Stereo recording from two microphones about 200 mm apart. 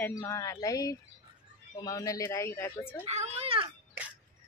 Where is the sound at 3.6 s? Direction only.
10° right (ahead or behind).